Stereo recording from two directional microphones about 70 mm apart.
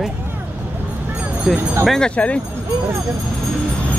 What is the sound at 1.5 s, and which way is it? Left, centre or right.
Speech, centre.